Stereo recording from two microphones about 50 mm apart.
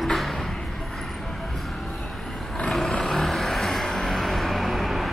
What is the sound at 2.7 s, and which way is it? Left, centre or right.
Vehicle, centre.